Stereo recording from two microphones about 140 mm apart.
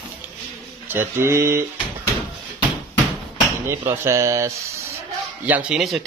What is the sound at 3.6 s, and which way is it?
Speech, 20° right (ahead or behind).